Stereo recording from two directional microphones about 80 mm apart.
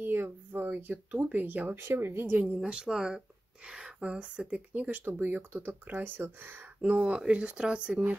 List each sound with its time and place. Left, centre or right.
0.0 s a sound: right
1.8 s speech: right
2.7 s speech: centre